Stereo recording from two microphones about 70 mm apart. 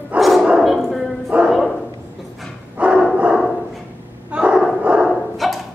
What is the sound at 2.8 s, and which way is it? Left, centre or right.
Dog, centre.